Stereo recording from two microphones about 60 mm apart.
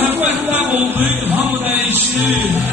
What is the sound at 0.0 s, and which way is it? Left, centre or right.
Music, right.